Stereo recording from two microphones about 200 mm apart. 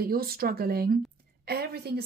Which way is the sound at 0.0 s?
50° right (ahead or behind).